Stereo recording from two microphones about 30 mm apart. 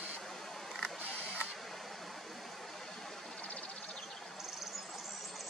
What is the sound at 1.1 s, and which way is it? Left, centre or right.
Camera, left.